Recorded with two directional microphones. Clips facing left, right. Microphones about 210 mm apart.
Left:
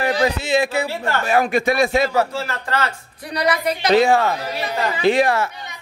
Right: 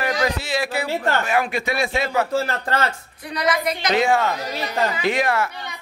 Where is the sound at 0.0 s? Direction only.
30° left (ahead or behind).